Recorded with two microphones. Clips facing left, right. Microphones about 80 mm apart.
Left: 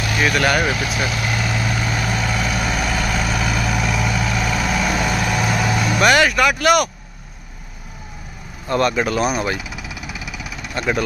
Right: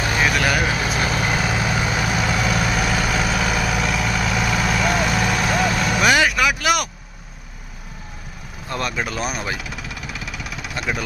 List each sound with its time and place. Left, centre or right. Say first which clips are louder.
0.0 s vehicle: even; right
0.3 s speech: left 2 dB; centre
0.8 s speech: right 1 dB; right
1.3 s vehicle: right 1 dB; centre
8.6 s vehicle: left 7 dB; centre